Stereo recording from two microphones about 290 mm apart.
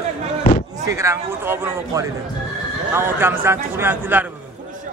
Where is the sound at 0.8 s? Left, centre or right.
Centre.